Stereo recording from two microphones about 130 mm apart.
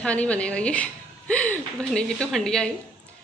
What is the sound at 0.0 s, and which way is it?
A woman's voice, 10° left (ahead or behind).